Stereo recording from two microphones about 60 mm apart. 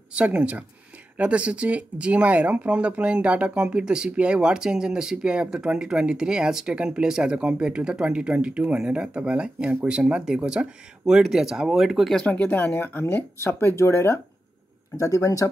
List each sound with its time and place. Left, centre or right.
0.1 s speech: right; by 12.1 s centre
12.3 s speech: left
13.4 s speech: left
15.0 s speech: left